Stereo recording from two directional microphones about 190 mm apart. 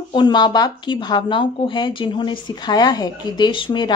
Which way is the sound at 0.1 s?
25° left (ahead or behind).